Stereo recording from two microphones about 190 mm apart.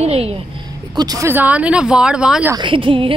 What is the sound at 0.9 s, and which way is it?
Speech, 20° right (ahead or behind).